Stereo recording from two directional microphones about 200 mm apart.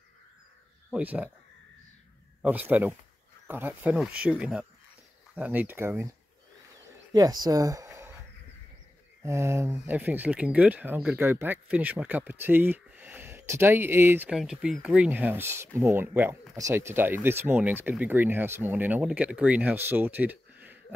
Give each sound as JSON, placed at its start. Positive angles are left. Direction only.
{"t": 0.8, "sound": "speech", "side_deg": -5}
{"t": 2.4, "sound": "speech", "side_deg": -10}
{"t": 7.1, "sound": "speech", "side_deg": -20}
{"t": 9.2, "sound": "speech", "side_deg": -15}